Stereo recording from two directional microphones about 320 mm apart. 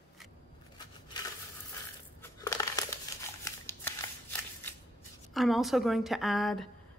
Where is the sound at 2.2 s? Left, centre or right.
Centre.